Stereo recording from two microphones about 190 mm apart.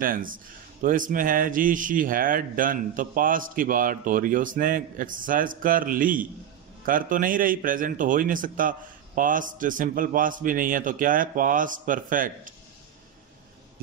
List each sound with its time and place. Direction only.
0.0 s a man's voice: 45° right (ahead or behind)